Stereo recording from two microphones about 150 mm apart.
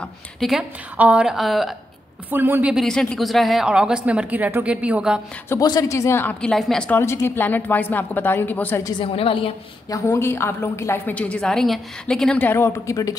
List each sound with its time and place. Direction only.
0.0 s a woman's voice: centre (ahead or behind)
2.3 s speech: 15° right (ahead or behind)
5.5 s a woman's voice: 25° left (ahead or behind); by 7.0 s 5° left (ahead or behind)
7.0 s a woman's voice: 15° left (ahead or behind)
9.0 s a woman's voice: 40° left (ahead or behind)
9.8 s a woman's voice: 20° left (ahead or behind)